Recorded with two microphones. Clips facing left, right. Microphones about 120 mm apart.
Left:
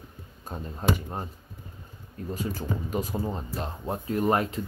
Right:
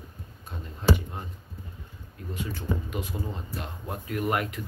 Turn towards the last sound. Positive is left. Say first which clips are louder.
# left 4 dB
turn(degrees=30)  # may be behind; listen again after turning